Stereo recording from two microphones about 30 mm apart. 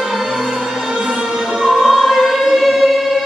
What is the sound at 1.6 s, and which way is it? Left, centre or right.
Choir, centre.